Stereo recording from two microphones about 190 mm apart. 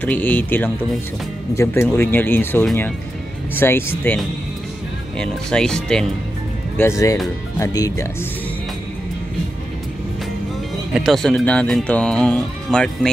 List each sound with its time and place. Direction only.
0.0 s speech: 10° left (ahead or behind)
5.2 s speech: 5° left (ahead or behind)
6.8 s speech: 15° left (ahead or behind)
10.9 s speech: centre (ahead or behind)